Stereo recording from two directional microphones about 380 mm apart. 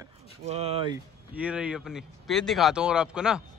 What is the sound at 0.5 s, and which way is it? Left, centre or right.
Speech, centre.